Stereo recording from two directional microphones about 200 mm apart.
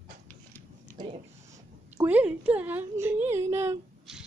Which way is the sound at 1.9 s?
10° right (ahead or behind).